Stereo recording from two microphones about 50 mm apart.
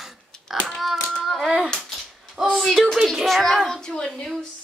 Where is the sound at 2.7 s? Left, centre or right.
Centre.